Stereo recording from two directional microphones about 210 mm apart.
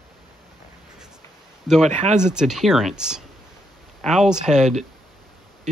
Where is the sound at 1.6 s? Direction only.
Centre (ahead or behind).